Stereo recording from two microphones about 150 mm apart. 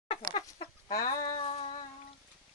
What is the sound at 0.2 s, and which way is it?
Chicken, 30° left (ahead or behind).